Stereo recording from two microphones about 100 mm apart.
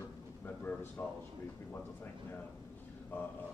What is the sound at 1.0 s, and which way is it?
Speech, 30° left (ahead or behind).